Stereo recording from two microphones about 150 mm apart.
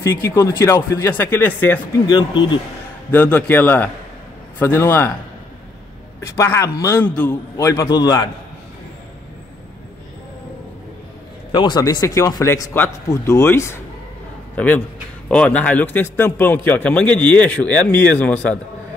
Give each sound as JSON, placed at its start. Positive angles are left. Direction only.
{"t": 0.0, "sound": "a man's voice", "side_deg": 20}
{"t": 2.0, "sound": "speech", "side_deg": 30}
{"t": 3.1, "sound": "a man's voice", "side_deg": 10}
{"t": 6.3, "sound": "a man's voice", "side_deg": 20}
{"t": 11.5, "sound": "a man's voice", "side_deg": 30}